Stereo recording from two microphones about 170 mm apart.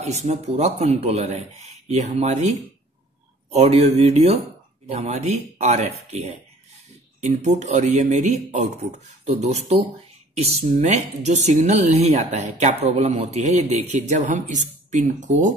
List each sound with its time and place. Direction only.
0.0 s speech: 40° right (ahead or behind)
3.5 s speech: 40° right (ahead or behind)